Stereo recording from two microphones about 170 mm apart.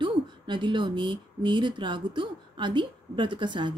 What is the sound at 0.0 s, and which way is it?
Speech, 30° right (ahead or behind).